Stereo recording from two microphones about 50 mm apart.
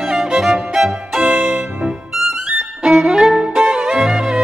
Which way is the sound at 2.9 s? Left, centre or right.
Centre.